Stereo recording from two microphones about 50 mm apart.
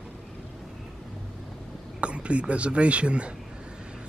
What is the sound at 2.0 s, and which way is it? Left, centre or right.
A man's voice, right.